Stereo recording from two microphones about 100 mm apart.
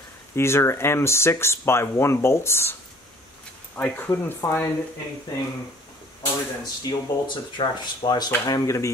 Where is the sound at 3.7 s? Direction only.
20° left (ahead or behind).